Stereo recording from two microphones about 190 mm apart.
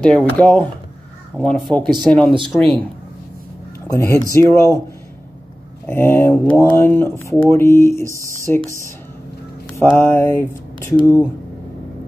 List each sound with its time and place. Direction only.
0.0 s speech: 5° left (ahead or behind)
3.8 s speech: 15° left (ahead or behind)
5.9 s speech: 10° left (ahead or behind)
9.8 s speech: 15° left (ahead or behind)